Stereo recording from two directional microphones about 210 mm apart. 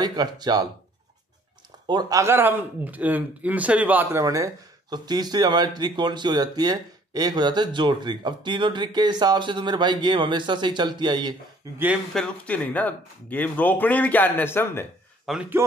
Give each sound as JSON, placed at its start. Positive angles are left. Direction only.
{"t": 0.0, "sound": "speech", "side_deg": -20}
{"t": 1.9, "sound": "speech", "side_deg": -20}
{"t": 11.8, "sound": "speech", "side_deg": 0}
{"t": 15.2, "sound": "speech", "side_deg": -5}